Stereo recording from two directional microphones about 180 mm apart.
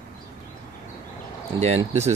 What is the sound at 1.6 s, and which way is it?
Speech, 40° right (ahead or behind).